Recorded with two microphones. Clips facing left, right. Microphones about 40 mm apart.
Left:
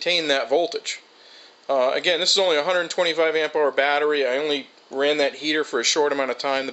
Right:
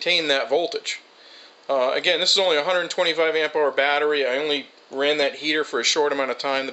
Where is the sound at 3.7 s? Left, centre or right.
Centre.